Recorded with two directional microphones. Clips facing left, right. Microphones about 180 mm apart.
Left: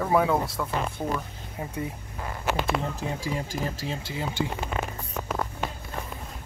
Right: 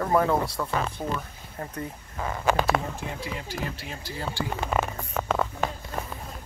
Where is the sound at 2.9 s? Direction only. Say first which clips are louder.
Left 4 dB; 40° left (ahead or behind).